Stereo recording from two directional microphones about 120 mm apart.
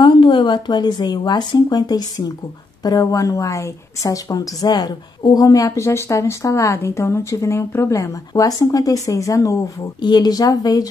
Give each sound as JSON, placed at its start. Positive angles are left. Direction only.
{"t": 0.0, "sound": "a woman's voice", "side_deg": 45}